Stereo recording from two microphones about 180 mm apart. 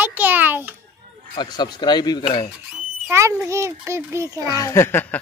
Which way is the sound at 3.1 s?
15° right (ahead or behind).